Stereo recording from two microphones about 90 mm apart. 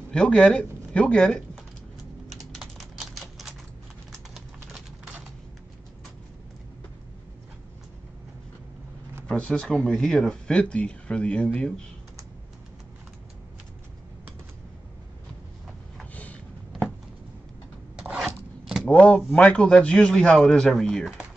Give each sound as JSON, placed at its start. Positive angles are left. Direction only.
{"t": 0.1, "sound": "speech", "side_deg": 10}
{"t": 2.5, "sound": "typing", "side_deg": 5}
{"t": 4.1, "sound": "a sound", "side_deg": -5}
{"t": 9.3, "sound": "speech", "side_deg": 10}
{"t": 16.0, "sound": "a sound", "side_deg": 15}
{"t": 18.1, "sound": "zipper", "side_deg": 0}
{"t": 18.9, "sound": "speech", "side_deg": 15}